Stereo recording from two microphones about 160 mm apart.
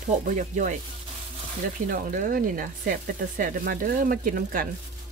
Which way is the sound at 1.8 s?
55° right (ahead or behind).